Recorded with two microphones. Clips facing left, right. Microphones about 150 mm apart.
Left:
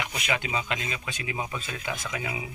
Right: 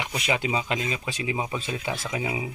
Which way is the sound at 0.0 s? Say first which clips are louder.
Right 3 dB; 30° right (ahead or behind).